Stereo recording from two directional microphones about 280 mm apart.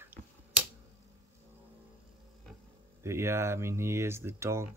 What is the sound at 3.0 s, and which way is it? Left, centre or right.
Speech, centre.